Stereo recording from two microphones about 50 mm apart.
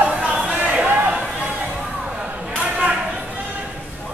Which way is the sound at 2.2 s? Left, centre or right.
Right.